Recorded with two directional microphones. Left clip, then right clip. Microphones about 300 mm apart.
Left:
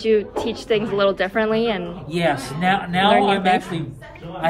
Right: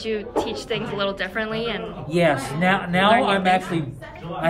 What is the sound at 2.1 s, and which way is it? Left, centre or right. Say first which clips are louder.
A man's voice: right 1 dB; centre.